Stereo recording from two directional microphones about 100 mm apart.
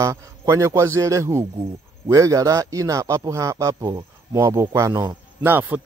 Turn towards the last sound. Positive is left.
turn(degrees=-20)  # may be behind; listen again after turning